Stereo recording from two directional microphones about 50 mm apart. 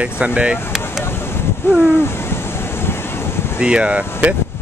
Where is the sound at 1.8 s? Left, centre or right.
Left.